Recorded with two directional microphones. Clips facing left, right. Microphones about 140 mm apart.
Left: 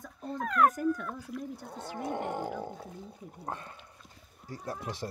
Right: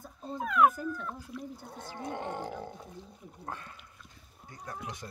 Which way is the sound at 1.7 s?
20° left (ahead or behind).